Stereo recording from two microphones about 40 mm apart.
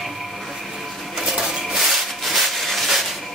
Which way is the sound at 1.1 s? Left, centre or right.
Centre.